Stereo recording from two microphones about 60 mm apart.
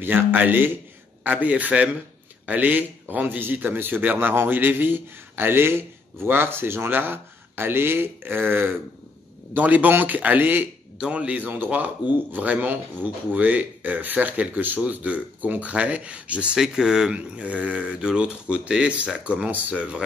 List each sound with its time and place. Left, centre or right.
0.0 s a man's voice: right
11.0 s speech: centre